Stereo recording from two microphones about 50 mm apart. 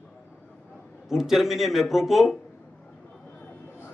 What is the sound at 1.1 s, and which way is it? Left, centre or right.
A man's voice, centre.